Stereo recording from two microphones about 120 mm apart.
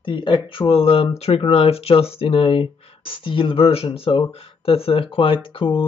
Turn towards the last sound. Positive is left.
turn(degrees=45)  # may be behind; listen again after turning